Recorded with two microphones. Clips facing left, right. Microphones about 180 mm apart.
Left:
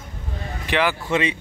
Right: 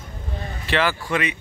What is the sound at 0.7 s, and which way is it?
Speech, 15° left (ahead or behind).